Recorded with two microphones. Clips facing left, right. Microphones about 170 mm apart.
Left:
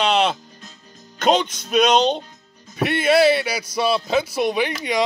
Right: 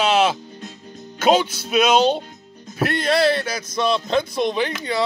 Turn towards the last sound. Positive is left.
turn(degrees=10)  # may be behind; listen again after turning